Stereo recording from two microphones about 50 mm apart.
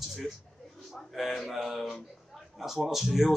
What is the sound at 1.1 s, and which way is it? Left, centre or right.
A man's voice, centre.